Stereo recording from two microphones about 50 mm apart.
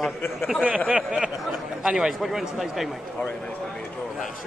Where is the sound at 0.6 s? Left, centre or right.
Right.